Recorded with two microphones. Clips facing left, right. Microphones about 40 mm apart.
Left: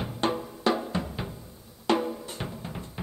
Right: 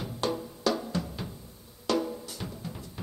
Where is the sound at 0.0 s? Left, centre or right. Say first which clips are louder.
Left 3 dB; left.